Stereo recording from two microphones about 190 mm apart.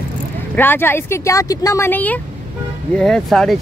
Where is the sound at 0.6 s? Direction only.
10° left (ahead or behind).